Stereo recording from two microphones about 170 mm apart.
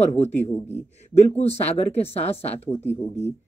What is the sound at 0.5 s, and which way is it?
Speech, 10° left (ahead or behind).